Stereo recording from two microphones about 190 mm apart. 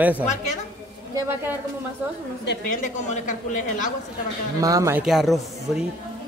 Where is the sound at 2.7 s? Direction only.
40° left (ahead or behind).